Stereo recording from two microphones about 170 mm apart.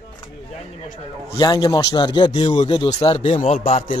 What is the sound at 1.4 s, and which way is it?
Speech, 25° left (ahead or behind).